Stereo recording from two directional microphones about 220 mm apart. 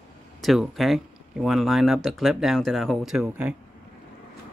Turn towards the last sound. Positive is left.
turn(degrees=-5)  # may be behind; listen again after turning